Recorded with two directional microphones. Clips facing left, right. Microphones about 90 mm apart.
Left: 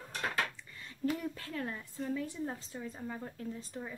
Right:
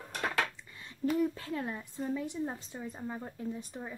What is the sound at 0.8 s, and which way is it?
Speech, 20° right (ahead or behind).